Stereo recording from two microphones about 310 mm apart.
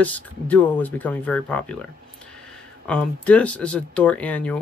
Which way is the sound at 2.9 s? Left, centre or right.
Centre.